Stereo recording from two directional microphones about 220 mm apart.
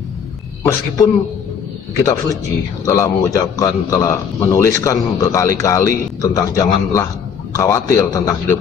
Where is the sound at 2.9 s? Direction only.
15° left (ahead or behind).